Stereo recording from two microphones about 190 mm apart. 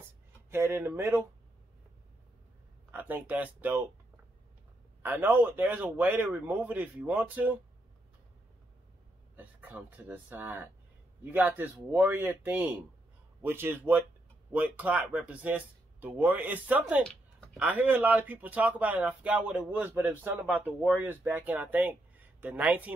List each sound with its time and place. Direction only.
0.5 s speech: 15° right (ahead or behind)
2.9 s speech: 10° right (ahead or behind)
5.0 s speech: 10° right (ahead or behind)
9.6 s speech: 10° right (ahead or behind)
17.0 s a sound: 5° left (ahead or behind)
17.6 s speech: 10° right (ahead or behind)